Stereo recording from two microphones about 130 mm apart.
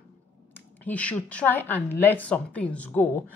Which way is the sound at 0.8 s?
10° left (ahead or behind).